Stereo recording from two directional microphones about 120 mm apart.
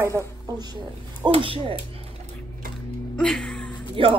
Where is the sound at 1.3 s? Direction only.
45° right (ahead or behind).